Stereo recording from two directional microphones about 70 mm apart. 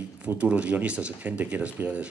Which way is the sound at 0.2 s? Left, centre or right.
Centre.